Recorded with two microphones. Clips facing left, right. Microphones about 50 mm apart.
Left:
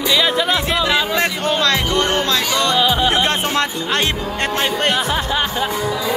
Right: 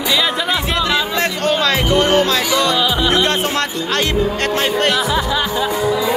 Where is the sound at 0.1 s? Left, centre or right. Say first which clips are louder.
Left 1 dB; centre.